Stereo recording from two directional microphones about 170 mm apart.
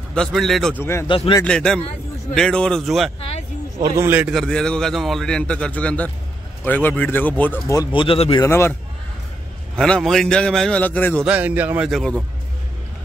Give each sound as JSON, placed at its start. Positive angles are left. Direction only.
{"t": 0.1, "sound": "a man's voice", "side_deg": 5}
{"t": 1.0, "sound": "a man's voice", "side_deg": 30}
{"t": 1.4, "sound": "a man's voice", "side_deg": 5}
{"t": 3.8, "sound": "a man's voice", "side_deg": -15}
{"t": 4.3, "sound": "a man's voice", "side_deg": 0}
{"t": 7.9, "sound": "speech", "side_deg": 30}
{"t": 8.4, "sound": "speech", "side_deg": 15}
{"t": 9.8, "sound": "a man's voice", "side_deg": 5}
{"t": 11.2, "sound": "a man's voice", "side_deg": -10}
{"t": 11.9, "sound": "a man's voice", "side_deg": 5}